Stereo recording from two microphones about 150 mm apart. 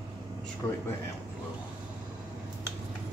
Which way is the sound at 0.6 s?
25° left (ahead or behind).